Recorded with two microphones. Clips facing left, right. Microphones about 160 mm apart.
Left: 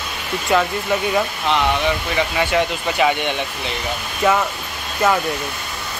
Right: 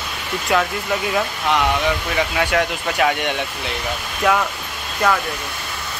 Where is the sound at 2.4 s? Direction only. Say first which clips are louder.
Left 1 dB; 5° left (ahead or behind).